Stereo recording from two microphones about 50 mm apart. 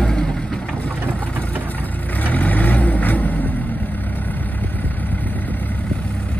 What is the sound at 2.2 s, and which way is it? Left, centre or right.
Vehicle, left.